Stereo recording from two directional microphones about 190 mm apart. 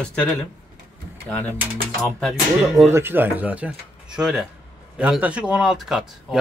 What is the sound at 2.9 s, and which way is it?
Speech, 10° right (ahead or behind).